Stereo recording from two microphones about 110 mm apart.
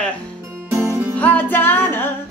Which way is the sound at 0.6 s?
20° right (ahead or behind).